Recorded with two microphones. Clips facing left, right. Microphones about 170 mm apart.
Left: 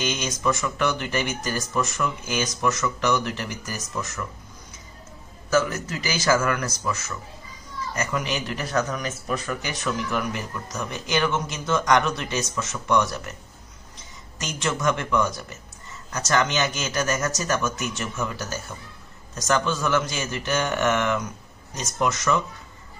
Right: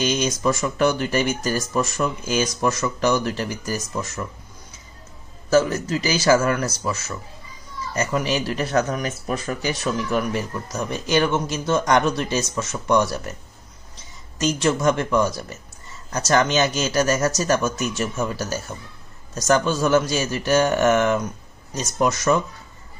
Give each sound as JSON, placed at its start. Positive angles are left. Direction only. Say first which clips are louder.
{"t": 0.0, "sound": "speech", "louder": "right 5 dB", "side_deg": -35}
{"t": 5.5, "sound": "a man's voice", "louder": "right 5 dB", "side_deg": -30}
{"t": 14.4, "sound": "speech", "louder": "right 6 dB", "side_deg": -30}